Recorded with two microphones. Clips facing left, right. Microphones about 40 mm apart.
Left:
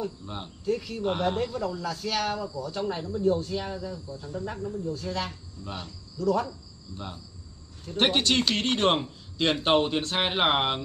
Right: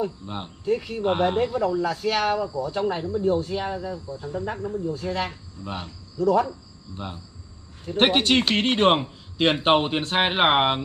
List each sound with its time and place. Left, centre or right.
0.0 s speech: right
7.8 s speech: right